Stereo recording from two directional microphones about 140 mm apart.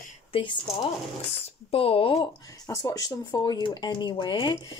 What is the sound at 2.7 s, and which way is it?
Speech, 25° left (ahead or behind).